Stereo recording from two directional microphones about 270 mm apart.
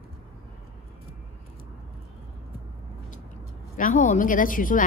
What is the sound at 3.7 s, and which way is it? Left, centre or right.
A woman's voice, left.